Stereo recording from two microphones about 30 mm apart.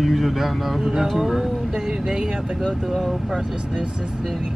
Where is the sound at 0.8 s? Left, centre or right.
Centre.